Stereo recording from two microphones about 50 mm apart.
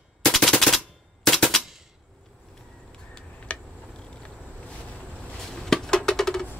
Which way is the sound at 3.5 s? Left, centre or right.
Left.